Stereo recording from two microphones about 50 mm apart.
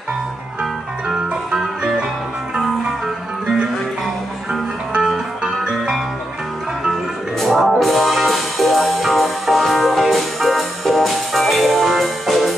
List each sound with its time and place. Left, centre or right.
0.6 s music: centre
4.5 s music: centre
6.9 s music: centre